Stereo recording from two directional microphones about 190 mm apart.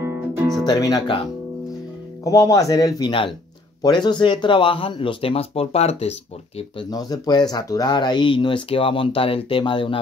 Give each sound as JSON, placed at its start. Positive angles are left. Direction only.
{"t": 0.0, "sound": "music", "side_deg": -10}
{"t": 0.7, "sound": "speech", "side_deg": 20}
{"t": 2.2, "sound": "speech", "side_deg": 15}
{"t": 6.8, "sound": "speech", "side_deg": 20}